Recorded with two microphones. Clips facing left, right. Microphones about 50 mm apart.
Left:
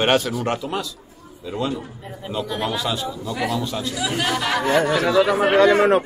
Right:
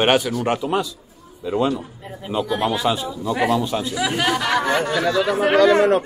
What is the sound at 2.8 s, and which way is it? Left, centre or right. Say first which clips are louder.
Speech: right 3 dB; centre.